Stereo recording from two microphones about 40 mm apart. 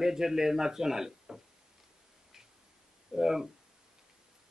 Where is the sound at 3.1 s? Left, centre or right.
Centre.